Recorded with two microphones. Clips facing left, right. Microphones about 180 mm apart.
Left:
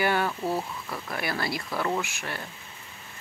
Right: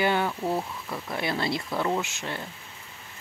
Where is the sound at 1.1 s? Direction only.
20° right (ahead or behind).